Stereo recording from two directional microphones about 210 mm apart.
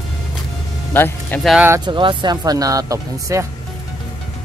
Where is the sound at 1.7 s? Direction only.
20° right (ahead or behind).